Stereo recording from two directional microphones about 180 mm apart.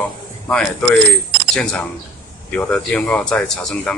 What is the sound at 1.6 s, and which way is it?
Speech, 5° left (ahead or behind).